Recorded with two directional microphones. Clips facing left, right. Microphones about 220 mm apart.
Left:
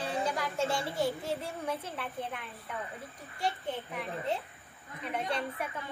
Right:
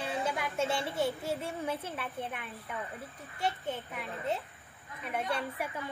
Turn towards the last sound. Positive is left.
turn(degrees=-5)  # may be behind; listen again after turning